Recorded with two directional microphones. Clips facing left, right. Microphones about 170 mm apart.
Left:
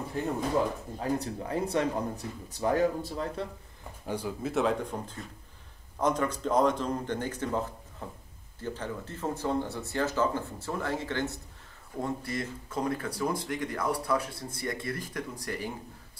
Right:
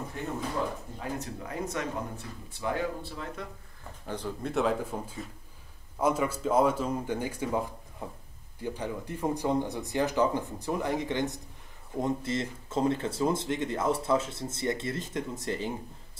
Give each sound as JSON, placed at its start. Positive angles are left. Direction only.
{"t": 0.9, "sound": "speech", "side_deg": 35}
{"t": 4.0, "sound": "speech", "side_deg": 10}